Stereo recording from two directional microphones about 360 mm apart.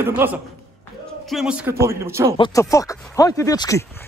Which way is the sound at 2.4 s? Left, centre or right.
Centre.